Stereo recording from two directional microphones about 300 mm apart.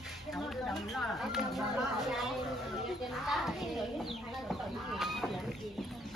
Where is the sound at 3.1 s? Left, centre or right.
Centre.